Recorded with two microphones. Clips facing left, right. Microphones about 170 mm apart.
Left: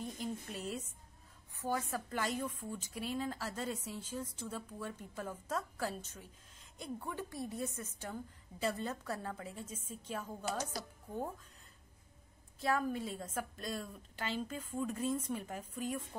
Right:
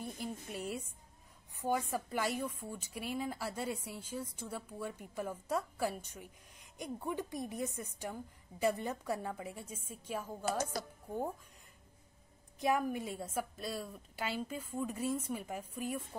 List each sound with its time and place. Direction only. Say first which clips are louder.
0.0 s a sound: left 1 dB; 10° right (ahead or behind)
1.5 s a woman's voice: right 3 dB; 15° right (ahead or behind)
12.5 s a woman's voice: right 2 dB; 15° right (ahead or behind)